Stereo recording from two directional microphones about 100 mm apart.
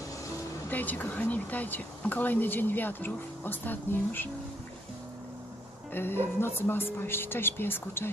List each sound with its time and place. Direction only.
0.7 s speech: 15° left (ahead or behind)
5.9 s speech: 20° left (ahead or behind)